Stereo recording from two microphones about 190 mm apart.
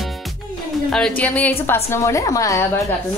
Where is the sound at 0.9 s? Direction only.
5° left (ahead or behind).